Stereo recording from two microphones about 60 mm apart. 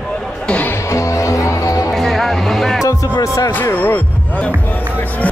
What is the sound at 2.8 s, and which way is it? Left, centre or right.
Music, left.